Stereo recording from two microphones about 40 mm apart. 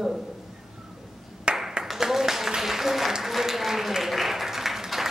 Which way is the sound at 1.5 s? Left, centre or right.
Right.